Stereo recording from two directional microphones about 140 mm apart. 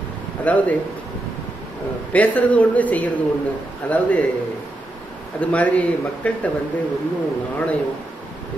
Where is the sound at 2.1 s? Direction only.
10° left (ahead or behind).